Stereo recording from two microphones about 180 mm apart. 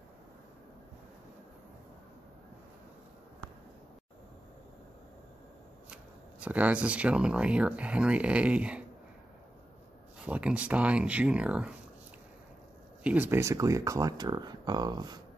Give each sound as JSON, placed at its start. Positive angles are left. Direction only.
{"t": 6.4, "sound": "speech", "side_deg": -10}
{"t": 10.2, "sound": "speech", "side_deg": -5}
{"t": 13.0, "sound": "speech", "side_deg": -10}